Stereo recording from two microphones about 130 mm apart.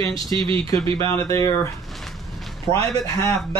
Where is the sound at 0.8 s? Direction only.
40° right (ahead or behind).